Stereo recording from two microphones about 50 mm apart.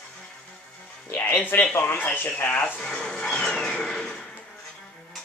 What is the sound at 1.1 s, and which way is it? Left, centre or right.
Speech, left.